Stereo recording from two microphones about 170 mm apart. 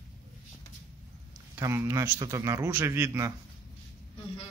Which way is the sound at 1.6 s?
15° right (ahead or behind).